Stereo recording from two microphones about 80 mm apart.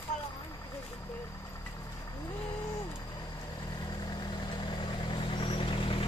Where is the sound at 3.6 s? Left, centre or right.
Left.